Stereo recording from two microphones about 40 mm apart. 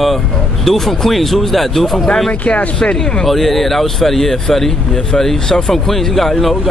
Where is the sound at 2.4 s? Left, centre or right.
Left.